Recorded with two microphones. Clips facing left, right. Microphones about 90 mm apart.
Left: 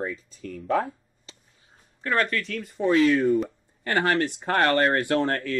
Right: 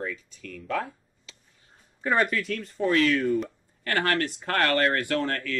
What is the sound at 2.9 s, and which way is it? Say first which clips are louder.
Speech: left 4 dB; 20° left (ahead or behind).